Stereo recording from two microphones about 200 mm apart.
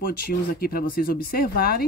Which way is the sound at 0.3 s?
50° left (ahead or behind).